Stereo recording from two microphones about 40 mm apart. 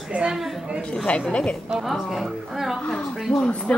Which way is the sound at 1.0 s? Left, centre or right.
Left.